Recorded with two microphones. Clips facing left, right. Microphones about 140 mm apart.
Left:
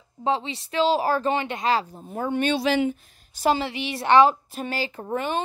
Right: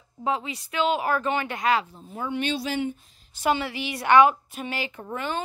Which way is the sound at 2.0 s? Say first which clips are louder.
Left 4 dB; 50° left (ahead or behind).